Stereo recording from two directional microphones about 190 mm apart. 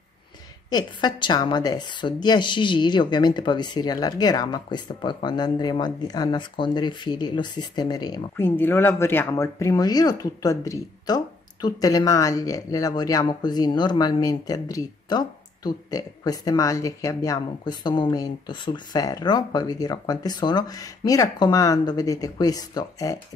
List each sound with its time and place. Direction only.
0.7 s a woman's voice: 20° left (ahead or behind)